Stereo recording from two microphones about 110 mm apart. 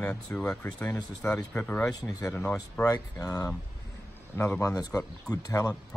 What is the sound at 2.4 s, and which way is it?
Speech, 15° left (ahead or behind).